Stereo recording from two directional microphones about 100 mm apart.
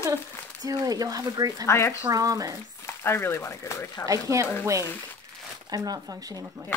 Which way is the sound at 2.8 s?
25° left (ahead or behind).